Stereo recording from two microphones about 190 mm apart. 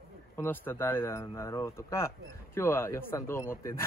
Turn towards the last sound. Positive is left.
turn(degrees=15)  # may be behind; listen again after turning